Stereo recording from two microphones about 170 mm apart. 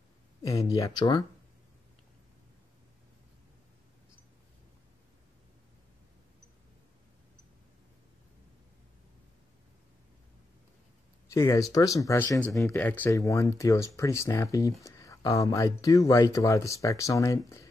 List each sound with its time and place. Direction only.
0.4 s speech: 20° left (ahead or behind)
11.3 s speech: 15° left (ahead or behind)